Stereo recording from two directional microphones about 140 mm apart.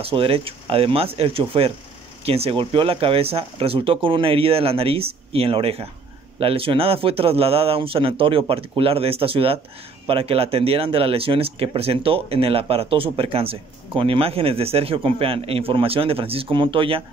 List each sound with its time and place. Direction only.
0.0 s speech: 40° right (ahead or behind)